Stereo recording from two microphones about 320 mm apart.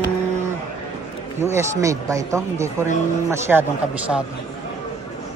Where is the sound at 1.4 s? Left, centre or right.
Centre.